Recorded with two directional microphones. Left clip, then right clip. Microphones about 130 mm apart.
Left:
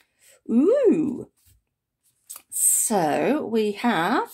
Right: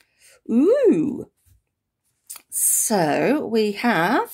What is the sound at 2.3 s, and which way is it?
Speech, 30° right (ahead or behind).